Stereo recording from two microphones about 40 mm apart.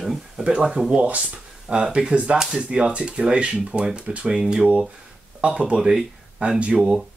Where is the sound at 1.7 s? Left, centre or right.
Right.